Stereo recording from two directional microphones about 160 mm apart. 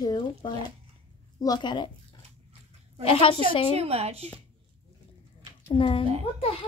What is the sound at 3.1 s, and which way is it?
Speech, 35° left (ahead or behind).